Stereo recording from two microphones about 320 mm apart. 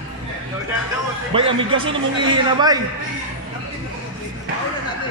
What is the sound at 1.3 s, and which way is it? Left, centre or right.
A man's voice, centre.